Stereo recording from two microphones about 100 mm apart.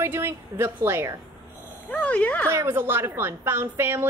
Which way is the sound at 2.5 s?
25° right (ahead or behind).